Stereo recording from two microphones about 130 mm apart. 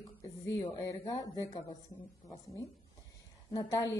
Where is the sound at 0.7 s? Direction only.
30° left (ahead or behind).